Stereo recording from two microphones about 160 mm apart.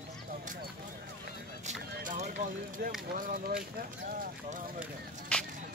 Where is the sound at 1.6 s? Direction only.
50° right (ahead or behind).